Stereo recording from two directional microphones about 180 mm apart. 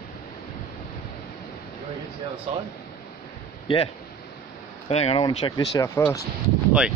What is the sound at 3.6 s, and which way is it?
Speech, 30° left (ahead or behind).